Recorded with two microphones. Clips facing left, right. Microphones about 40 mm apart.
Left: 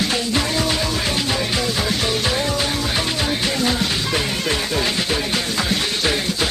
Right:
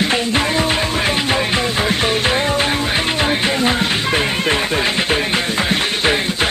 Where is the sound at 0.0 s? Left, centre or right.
Right.